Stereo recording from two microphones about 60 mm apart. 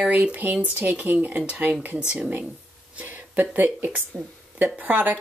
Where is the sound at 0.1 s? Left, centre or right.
Right.